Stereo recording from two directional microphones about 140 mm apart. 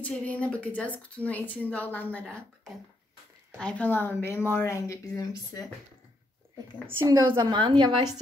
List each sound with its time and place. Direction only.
0.0 s a woman's voice: 10° left (ahead or behind)
3.5 s speech: 10° left (ahead or behind); by 5.7 s 25° left (ahead or behind)
7.0 s a woman's voice: 25° right (ahead or behind)